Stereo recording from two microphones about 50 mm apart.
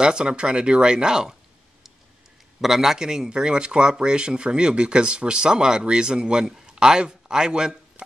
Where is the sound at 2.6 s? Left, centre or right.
Centre.